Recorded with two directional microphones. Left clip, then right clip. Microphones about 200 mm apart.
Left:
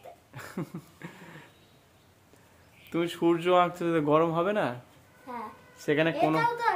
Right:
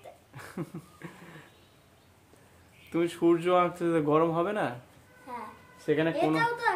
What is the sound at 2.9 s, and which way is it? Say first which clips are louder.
Speech: right 1 dB; 20° left (ahead or behind).